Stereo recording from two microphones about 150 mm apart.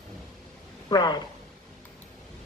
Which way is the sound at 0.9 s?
30° left (ahead or behind).